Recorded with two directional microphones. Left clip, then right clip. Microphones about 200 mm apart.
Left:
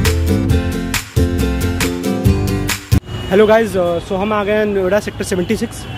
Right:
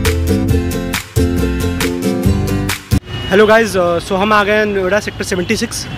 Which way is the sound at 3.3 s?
Centre (ahead or behind).